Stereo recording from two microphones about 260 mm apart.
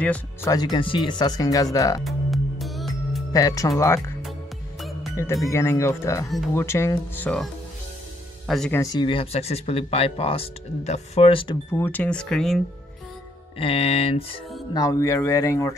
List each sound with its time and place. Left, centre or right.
0.0 s speech: centre
2.0 s music: centre
3.3 s speech: centre
4.2 s music: centre
5.1 s speech: centre
6.2 s speech: centre
6.6 s speech: centre
8.8 s speech: centre
11.7 s speech: centre
13.6 s speech: left